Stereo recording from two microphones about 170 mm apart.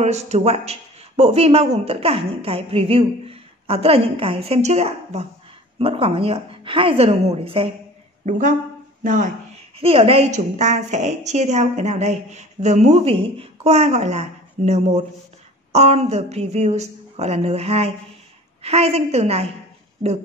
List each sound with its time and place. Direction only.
0.0 s a woman's voice: 40° right (ahead or behind)
8.3 s speech: 50° right (ahead or behind)
9.8 s a woman's voice: 35° right (ahead or behind)